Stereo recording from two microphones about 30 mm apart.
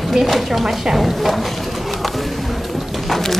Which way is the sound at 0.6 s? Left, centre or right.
Centre.